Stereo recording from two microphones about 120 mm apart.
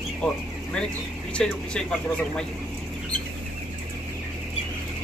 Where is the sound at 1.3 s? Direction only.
10° left (ahead or behind).